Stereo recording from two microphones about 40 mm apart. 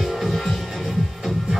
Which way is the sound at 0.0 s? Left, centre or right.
Centre.